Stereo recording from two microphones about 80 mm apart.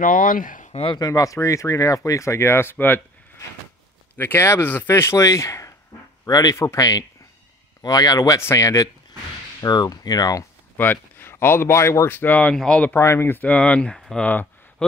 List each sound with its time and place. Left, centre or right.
0.9 s speech: left
4.2 s speech: left
6.5 s speech: left
7.8 s speech: left
9.6 s speech: left
10.8 s speech: left
12.9 s speech: left
13.4 s speech: centre
14.2 s a man's voice: left